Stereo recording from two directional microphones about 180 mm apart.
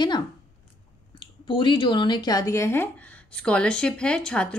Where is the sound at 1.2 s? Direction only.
25° left (ahead or behind).